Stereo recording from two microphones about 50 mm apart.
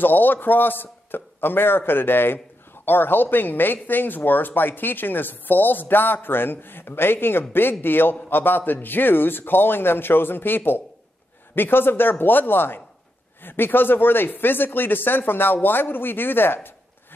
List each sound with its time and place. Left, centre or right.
0.0 s a man's voice: left